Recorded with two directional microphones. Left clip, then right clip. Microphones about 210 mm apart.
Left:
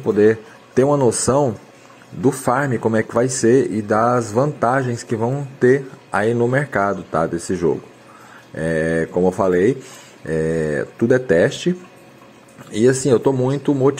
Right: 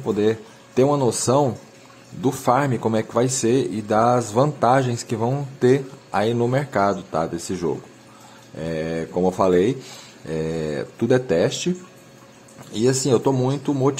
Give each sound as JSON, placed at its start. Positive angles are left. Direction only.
{"t": 0.0, "sound": "speech", "side_deg": 10}
{"t": 12.7, "sound": "speech", "side_deg": 10}